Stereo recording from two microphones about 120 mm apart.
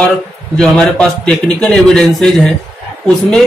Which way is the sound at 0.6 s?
5° left (ahead or behind).